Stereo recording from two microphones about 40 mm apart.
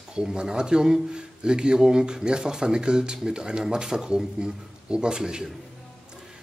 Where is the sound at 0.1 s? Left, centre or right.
Centre.